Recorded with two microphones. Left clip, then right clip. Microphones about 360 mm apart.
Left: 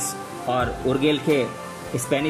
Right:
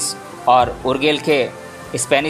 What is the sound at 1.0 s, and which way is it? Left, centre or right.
Speech, centre.